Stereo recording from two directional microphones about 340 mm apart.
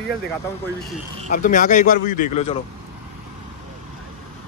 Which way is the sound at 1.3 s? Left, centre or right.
Left.